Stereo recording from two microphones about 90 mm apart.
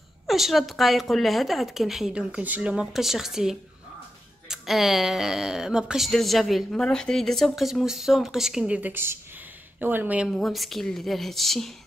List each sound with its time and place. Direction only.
0.3 s speech: centre (ahead or behind); by 10.2 s 20° right (ahead or behind)
10.2 s speech: centre (ahead or behind)